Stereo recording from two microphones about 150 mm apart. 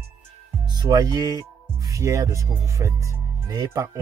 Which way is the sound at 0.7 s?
25° right (ahead or behind).